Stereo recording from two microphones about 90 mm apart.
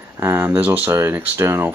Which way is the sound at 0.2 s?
25° right (ahead or behind).